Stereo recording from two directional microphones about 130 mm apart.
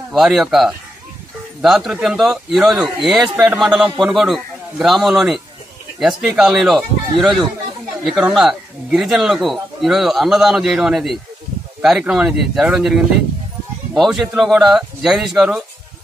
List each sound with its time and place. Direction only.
0.1 s speech: centre (ahead or behind)